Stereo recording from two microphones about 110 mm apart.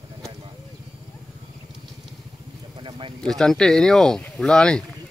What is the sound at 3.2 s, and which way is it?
Speech, 5° left (ahead or behind).